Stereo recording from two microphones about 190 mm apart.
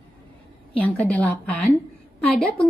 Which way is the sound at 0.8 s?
5° left (ahead or behind).